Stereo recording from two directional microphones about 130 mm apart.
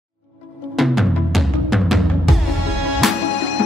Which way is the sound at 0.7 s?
Centre (ahead or behind).